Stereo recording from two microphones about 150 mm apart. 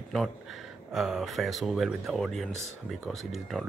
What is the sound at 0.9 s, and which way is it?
Speech, centre (ahead or behind).